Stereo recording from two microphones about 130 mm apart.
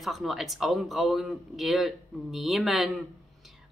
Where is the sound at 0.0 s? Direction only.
Centre (ahead or behind).